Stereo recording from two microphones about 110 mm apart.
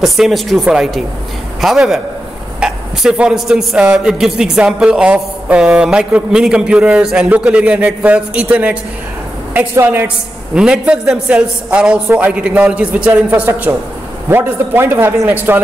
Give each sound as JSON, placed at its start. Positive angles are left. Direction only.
{"t": 0.0, "sound": "a man's voice", "side_deg": 0}
{"t": 13.3, "sound": "a man's voice", "side_deg": -25}